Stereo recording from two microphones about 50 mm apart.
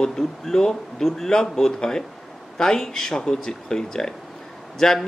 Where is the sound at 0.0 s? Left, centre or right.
Centre.